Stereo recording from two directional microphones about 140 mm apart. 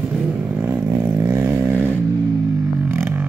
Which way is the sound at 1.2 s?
20° right (ahead or behind).